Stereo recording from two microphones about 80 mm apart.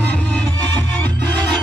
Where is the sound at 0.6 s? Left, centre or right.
Centre.